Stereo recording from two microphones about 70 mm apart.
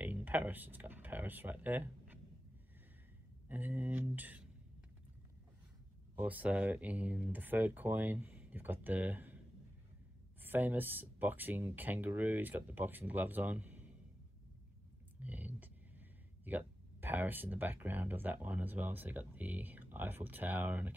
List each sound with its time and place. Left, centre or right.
0.0 s speech: right
3.4 s speech: right
6.1 s speech: right
10.4 s speech: right
15.1 s a sound: right
16.4 s speech: right